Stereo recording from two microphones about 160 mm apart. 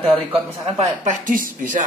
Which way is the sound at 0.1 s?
35° right (ahead or behind).